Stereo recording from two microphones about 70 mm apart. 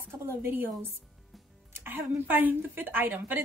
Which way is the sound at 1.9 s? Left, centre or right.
Right.